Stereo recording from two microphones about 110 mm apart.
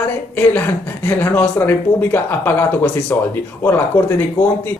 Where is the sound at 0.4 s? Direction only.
15° left (ahead or behind).